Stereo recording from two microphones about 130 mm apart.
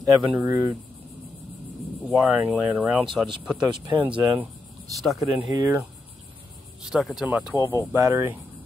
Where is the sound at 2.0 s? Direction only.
10° right (ahead or behind).